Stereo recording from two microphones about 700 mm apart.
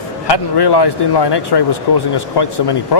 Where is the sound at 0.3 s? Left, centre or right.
Left.